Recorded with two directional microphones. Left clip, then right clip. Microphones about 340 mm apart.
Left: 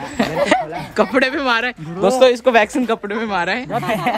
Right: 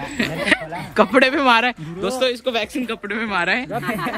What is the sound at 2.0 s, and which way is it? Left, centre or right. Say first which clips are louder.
Speech: left 10 dB; centre.